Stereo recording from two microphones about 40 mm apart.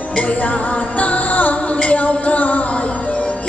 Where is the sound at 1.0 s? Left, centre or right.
Left.